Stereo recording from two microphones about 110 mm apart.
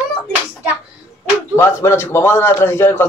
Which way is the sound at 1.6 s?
25° left (ahead or behind).